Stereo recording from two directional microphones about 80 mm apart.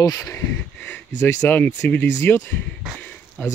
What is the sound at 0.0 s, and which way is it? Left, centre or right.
Speech, left.